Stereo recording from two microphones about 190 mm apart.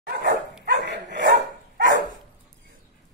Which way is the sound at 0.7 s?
65° right (ahead or behind).